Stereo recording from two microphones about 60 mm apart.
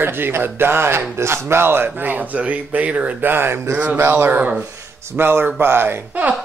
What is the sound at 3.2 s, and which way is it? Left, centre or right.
Speech, right.